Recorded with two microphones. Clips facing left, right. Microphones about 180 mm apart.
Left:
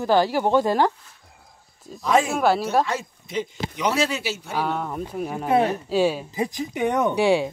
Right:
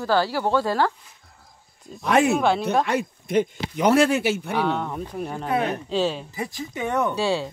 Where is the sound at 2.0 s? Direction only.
65° right (ahead or behind).